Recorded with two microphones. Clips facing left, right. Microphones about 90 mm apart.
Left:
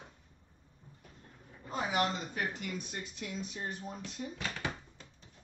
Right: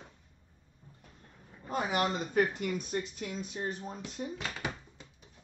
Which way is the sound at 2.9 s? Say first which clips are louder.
Right 6 dB; 40° right (ahead or behind).